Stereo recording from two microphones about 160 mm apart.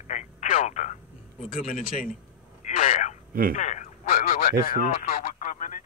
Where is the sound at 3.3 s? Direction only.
65° right (ahead or behind).